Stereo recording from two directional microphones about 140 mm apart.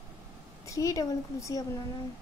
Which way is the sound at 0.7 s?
25° left (ahead or behind).